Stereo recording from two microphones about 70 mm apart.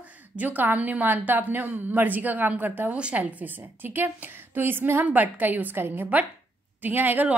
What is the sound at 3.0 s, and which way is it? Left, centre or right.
A woman's voice, centre.